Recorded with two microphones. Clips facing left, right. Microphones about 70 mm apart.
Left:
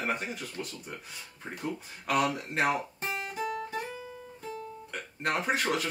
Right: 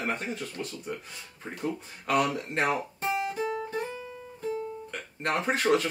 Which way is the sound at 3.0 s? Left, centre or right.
Right.